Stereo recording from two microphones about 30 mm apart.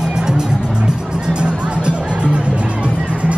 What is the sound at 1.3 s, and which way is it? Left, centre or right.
Music, right.